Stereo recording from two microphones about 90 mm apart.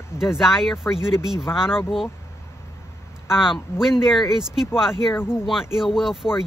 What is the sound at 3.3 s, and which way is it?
Speech, 5° right (ahead or behind).